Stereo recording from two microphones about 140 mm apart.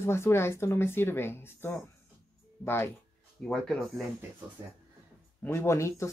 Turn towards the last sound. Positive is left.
turn(degrees=20)  # may be behind; listen again after turning